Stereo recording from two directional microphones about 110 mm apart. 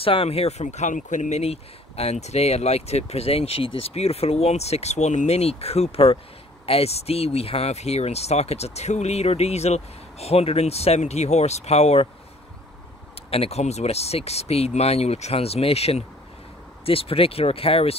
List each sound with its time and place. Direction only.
0.0 s speech: 60° left (ahead or behind)
13.3 s speech: 70° left (ahead or behind)